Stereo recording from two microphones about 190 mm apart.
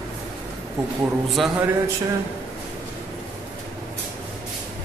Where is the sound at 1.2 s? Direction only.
Centre (ahead or behind).